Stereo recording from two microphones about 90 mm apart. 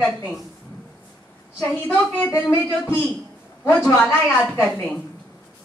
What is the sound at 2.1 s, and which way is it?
Speech, 15° left (ahead or behind).